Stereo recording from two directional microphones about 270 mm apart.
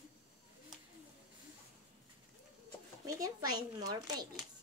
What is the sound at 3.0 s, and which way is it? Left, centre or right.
A child's voice, centre.